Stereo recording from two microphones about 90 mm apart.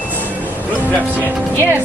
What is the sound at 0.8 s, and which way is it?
Speech, 20° left (ahead or behind).